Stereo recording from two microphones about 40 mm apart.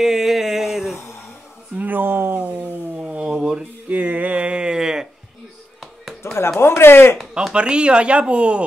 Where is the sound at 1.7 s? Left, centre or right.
Right.